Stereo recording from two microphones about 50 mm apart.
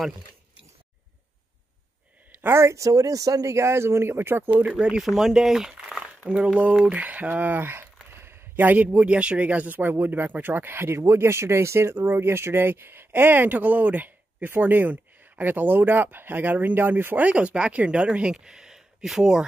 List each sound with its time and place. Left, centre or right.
2.4 s speech: right
4.7 s speech: centre
5.0 s speech: centre
6.2 s speech: right
6.9 s a sound: right
8.8 s speech: right
11.0 s speech: right
17.3 s speech: right